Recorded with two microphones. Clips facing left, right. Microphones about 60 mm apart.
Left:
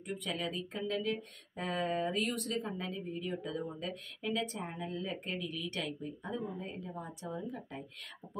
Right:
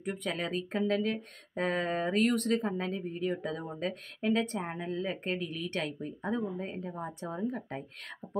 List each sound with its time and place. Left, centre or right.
0.0 s speech: right